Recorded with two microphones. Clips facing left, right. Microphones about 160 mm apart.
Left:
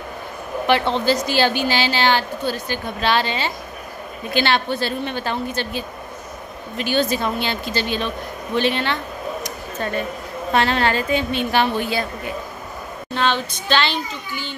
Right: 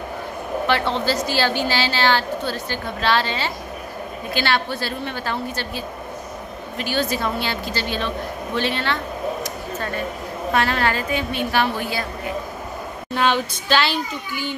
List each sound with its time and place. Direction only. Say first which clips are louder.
0.7 s a woman's voice: left 4 dB; 20° left (ahead or behind)
10.5 s a woman's voice: left 2 dB; 25° left (ahead or behind)
13.1 s a child's voice: right 1 dB; 10° right (ahead or behind)